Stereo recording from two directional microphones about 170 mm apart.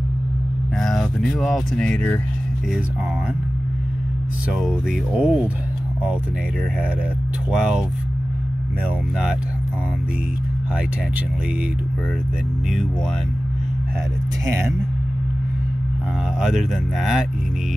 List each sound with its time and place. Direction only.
0.7 s speech: centre (ahead or behind)
4.5 s speech: 5° right (ahead or behind)
7.5 s speech: 5° right (ahead or behind)
14.4 s speech: 15° right (ahead or behind)
16.3 s speech: centre (ahead or behind)